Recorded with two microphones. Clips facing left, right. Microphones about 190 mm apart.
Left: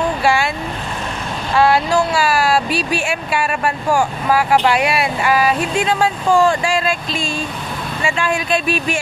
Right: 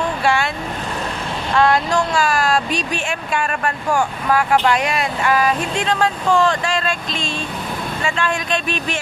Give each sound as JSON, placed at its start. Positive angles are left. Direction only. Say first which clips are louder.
{"t": 0.2, "sound": "vehicle", "louder": "left 1 dB", "side_deg": 10}
{"t": 1.5, "sound": "speech", "louder": "left 2 dB", "side_deg": 10}